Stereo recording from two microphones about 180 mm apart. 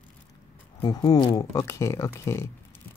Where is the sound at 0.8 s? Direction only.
20° left (ahead or behind).